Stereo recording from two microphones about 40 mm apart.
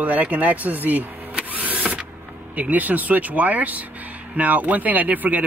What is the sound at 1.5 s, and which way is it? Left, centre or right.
Power windows, right.